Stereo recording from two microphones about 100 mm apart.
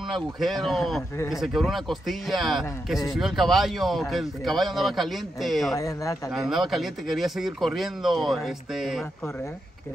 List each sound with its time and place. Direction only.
0.1 s speech: centre (ahead or behind)
5.8 s speech: 35° left (ahead or behind)
6.3 s speech: 5° right (ahead or behind)